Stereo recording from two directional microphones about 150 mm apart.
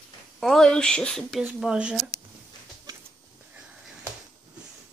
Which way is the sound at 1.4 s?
5° right (ahead or behind).